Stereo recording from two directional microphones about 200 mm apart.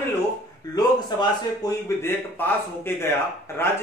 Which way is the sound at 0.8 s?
20° left (ahead or behind).